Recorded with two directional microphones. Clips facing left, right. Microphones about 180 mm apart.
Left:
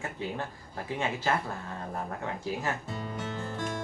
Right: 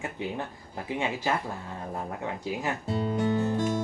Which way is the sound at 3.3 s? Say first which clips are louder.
Right 9 dB; 15° right (ahead or behind).